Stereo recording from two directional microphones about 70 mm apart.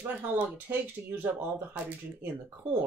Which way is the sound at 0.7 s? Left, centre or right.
Right.